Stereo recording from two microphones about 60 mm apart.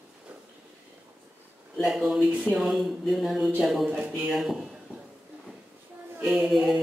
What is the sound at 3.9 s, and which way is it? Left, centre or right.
Speech, centre.